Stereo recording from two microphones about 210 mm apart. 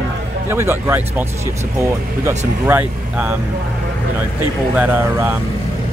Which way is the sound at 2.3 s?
10° right (ahead or behind).